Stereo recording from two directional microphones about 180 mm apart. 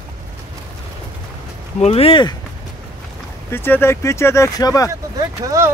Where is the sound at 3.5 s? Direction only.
10° left (ahead or behind).